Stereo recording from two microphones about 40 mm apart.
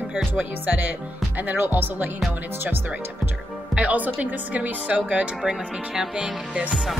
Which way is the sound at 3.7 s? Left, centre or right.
Right.